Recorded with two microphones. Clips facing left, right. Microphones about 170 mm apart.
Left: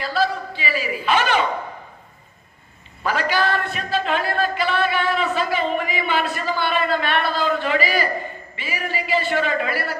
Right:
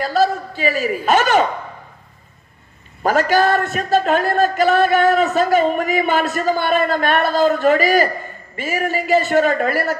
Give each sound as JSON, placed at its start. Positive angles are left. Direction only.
{"t": 0.0, "sound": "a man's voice", "side_deg": -45}
{"t": 3.0, "sound": "a man's voice", "side_deg": -45}